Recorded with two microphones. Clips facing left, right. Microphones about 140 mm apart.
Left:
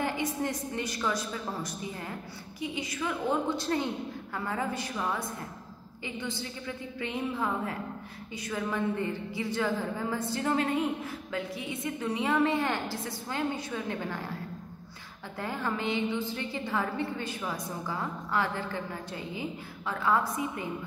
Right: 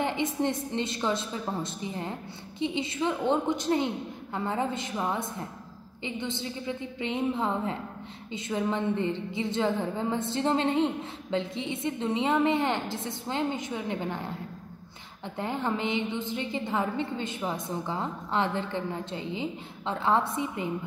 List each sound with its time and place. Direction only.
0.0 s a sound: 20° right (ahead or behind)
0.7 s a woman's voice: 25° right (ahead or behind)
15.3 s a woman's voice: 20° right (ahead or behind)